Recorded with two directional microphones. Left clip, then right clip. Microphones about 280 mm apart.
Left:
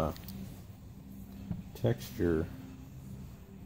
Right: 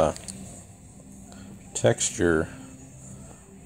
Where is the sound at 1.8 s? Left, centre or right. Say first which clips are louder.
Right 11 dB; right.